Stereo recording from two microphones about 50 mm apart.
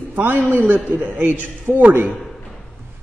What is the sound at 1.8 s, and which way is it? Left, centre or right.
Speech, right.